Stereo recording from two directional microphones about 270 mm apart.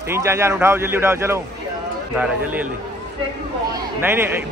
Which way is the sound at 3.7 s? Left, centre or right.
Centre.